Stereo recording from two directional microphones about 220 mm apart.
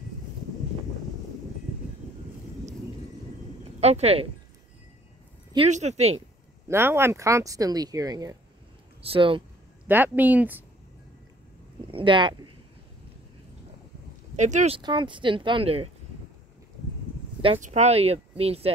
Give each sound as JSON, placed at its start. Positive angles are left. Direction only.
{"t": 3.8, "sound": "speech", "side_deg": -30}
{"t": 5.7, "sound": "speech", "side_deg": -30}
{"t": 6.7, "sound": "speech", "side_deg": -10}
{"t": 9.8, "sound": "speech", "side_deg": -10}
{"t": 11.9, "sound": "speech", "side_deg": -20}
{"t": 14.3, "sound": "speech", "side_deg": -35}
{"t": 14.8, "sound": "speech", "side_deg": -20}
{"t": 17.4, "sound": "speech", "side_deg": -30}